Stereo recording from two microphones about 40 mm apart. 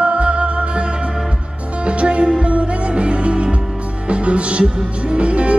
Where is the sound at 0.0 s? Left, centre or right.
Right.